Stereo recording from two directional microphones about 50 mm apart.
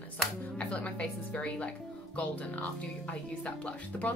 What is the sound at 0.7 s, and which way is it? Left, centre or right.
A woman's voice, left.